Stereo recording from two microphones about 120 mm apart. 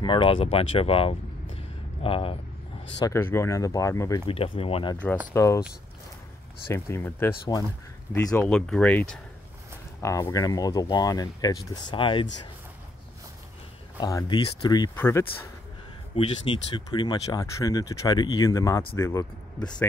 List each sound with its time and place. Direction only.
0.0 s speech: 45° left (ahead or behind)
3.0 s speech: 20° left (ahead or behind)
4.3 s speech: 50° left (ahead or behind)
5.3 s speech: 25° left (ahead or behind)
6.7 s speech: 25° left (ahead or behind)
8.5 s speech: 5° left (ahead or behind)
10.0 s speech: 25° left (ahead or behind); by 12.3 s 45° left (ahead or behind)
13.9 s speech: 30° left (ahead or behind)
14.3 s speech: 40° left (ahead or behind)
15.0 s speech: 20° left (ahead or behind)
16.2 s speech: 45° left (ahead or behind); by 19.2 s 20° left (ahead or behind)